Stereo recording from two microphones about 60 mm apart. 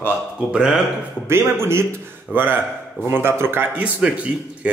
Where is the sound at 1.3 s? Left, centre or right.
Right.